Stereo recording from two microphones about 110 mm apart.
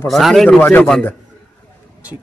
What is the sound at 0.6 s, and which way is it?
Speech, 15° left (ahead or behind).